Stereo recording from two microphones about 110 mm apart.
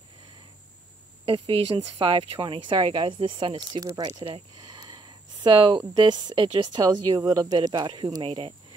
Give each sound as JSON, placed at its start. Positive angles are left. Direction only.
{"t": 1.2, "sound": "speech", "side_deg": -55}
{"t": 7.2, "sound": "speech", "side_deg": -35}